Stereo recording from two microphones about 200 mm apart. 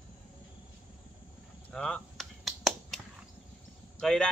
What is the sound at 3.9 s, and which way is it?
Speech, 5° left (ahead or behind).